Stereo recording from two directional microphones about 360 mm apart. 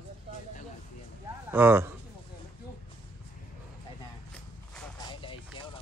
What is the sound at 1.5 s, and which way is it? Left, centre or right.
Speech, centre.